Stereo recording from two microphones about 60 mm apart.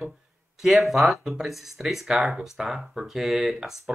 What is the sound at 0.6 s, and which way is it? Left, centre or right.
Speech, centre.